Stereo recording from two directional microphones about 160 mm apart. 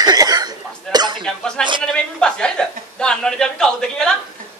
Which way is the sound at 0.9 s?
25° right (ahead or behind).